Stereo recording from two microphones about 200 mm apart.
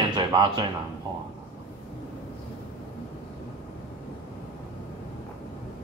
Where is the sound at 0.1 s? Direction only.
25° right (ahead or behind).